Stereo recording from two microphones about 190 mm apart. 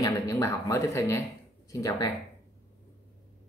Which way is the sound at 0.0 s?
15° left (ahead or behind).